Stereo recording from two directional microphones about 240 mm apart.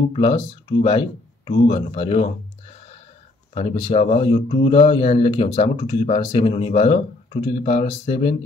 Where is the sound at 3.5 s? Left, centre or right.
Left.